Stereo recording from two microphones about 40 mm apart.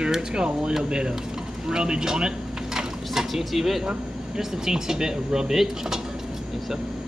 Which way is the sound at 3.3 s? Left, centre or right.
Centre.